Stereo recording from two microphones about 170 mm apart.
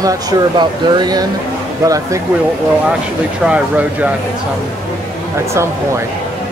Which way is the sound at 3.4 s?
10° right (ahead or behind).